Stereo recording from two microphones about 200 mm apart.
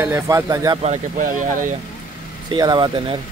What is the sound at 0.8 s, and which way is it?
Speech, 35° right (ahead or behind).